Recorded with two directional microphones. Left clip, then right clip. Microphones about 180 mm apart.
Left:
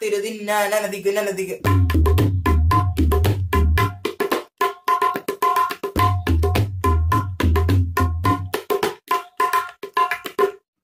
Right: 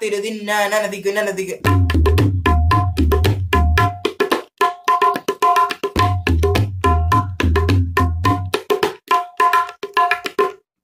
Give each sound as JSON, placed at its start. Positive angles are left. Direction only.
{"t": 0.0, "sound": "speech", "side_deg": -5}
{"t": 1.6, "sound": "music", "side_deg": -20}